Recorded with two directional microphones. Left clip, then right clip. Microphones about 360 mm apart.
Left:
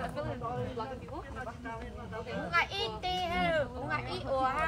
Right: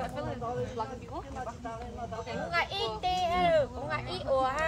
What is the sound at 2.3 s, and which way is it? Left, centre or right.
Speech, right.